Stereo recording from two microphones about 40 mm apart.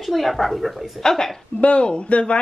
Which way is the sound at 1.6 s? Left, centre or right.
Left.